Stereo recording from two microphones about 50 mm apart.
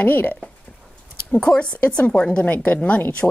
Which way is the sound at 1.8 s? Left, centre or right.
Left.